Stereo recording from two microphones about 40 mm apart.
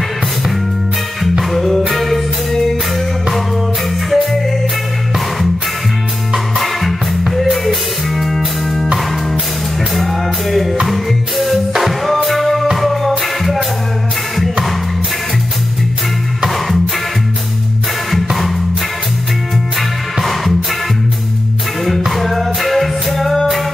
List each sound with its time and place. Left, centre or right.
1.4 s music: centre
4.1 s music: centre
6.3 s music: centre
16.4 s music: centre
18.1 s music: centre
20.2 s music: centre
21.8 s music: centre